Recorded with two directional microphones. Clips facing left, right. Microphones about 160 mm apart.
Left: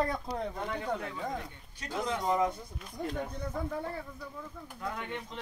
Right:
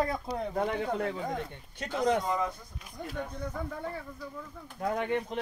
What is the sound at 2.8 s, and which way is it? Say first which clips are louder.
Speech: left 4 dB; 5° right (ahead or behind).